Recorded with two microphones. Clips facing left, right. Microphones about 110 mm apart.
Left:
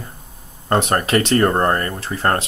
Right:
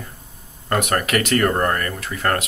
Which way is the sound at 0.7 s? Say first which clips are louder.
Left 3 dB; 30° left (ahead or behind).